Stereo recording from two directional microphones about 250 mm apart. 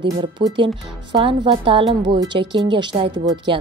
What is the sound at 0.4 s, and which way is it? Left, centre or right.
Speech, right.